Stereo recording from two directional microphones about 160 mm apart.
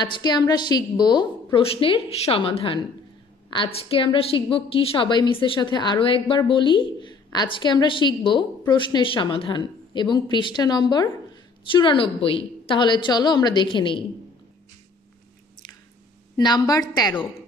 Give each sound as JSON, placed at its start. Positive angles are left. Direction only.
{"t": 0.0, "sound": "a woman's voice", "side_deg": 25}
{"t": 16.3, "sound": "a woman's voice", "side_deg": 25}